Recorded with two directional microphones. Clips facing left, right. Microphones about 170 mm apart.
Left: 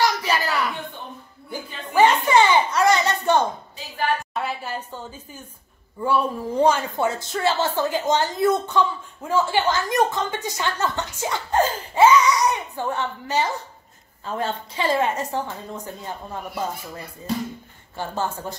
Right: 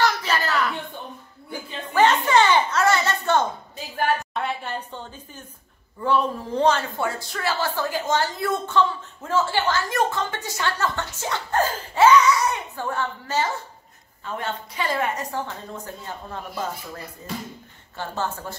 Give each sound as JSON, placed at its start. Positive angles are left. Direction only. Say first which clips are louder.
{"t": 0.0, "sound": "a sound", "louder": "left 1 dB", "side_deg": 10}
{"t": 4.3, "sound": "a sound", "louder": "even", "side_deg": 5}
{"t": 5.9, "sound": "speech", "louder": "even", "side_deg": 10}
{"t": 14.2, "sound": "a woman's voice", "louder": "left 3 dB", "side_deg": 30}
{"t": 15.4, "sound": "speech", "louder": "left 2 dB", "side_deg": 15}
{"t": 17.9, "sound": "speech", "louder": "left 2 dB", "side_deg": 15}